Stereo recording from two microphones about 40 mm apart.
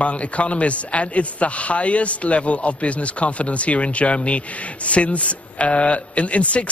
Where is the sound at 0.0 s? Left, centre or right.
Left.